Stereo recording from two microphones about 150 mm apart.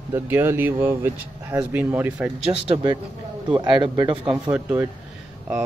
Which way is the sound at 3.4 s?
30° right (ahead or behind).